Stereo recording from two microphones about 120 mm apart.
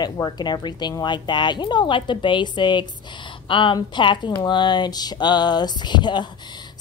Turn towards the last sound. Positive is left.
turn(degrees=40)  # may be behind; listen again after turning